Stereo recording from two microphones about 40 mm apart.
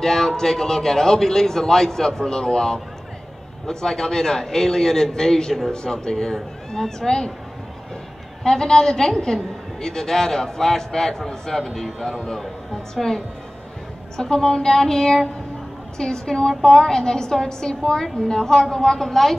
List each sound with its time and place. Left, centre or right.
0.0 s a man's voice: centre
8.5 s a man's voice: centre